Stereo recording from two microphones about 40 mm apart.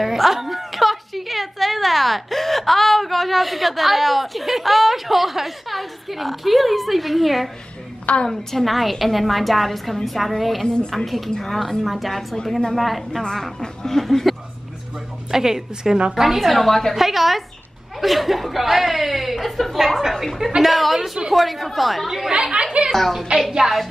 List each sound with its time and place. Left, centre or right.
0.0 s a woman's voice: centre
12.4 s speech: centre
12.7 s a woman's voice: centre
13.2 s speech: centre
14.3 s a sound: centre
15.3 s a woman's voice: centre
16.9 s a woman's voice: centre
22.3 s speech: right
22.9 s a woman's voice: centre